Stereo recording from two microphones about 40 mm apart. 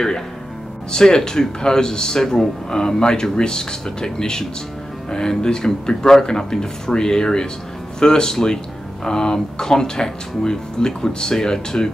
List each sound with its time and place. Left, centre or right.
0.9 s speech: centre